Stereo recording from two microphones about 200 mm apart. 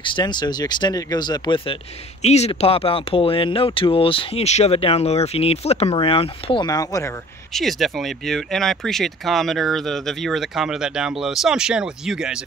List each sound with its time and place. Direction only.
0.0 s speech: 25° left (ahead or behind)
7.5 s speech: centre (ahead or behind)